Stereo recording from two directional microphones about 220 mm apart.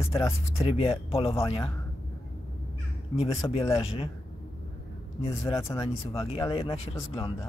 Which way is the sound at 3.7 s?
25° left (ahead or behind).